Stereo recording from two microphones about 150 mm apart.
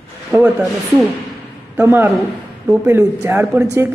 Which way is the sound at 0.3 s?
10° right (ahead or behind).